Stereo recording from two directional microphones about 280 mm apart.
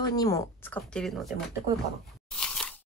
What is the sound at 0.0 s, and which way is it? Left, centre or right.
Speech, centre.